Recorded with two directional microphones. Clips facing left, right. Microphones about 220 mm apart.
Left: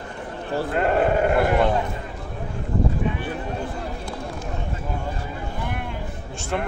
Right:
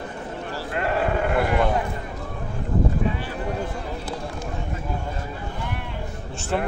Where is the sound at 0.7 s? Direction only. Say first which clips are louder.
Left 4 dB; 50° left (ahead or behind).